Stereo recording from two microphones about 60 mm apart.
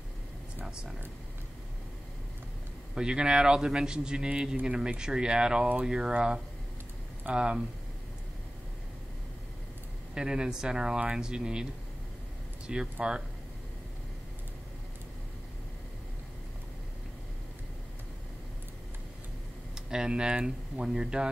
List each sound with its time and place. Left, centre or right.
0.7 s speech: centre
2.9 s speech: centre
10.1 s speech: centre
12.7 s speech: centre
19.7 s speech: centre